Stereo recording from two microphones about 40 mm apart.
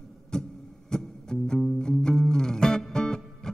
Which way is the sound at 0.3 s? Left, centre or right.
Centre.